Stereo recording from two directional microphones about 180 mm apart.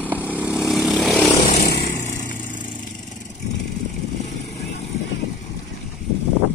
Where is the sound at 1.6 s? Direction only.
55° left (ahead or behind).